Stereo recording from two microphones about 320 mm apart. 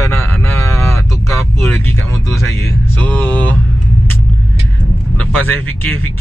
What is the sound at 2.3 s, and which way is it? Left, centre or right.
Speech, centre.